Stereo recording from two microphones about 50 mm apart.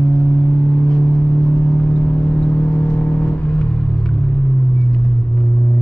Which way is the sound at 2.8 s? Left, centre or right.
Left.